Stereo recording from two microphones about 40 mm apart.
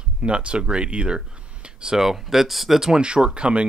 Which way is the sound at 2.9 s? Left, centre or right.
Right.